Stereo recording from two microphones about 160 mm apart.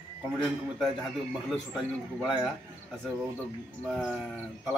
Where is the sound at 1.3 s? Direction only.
5° right (ahead or behind).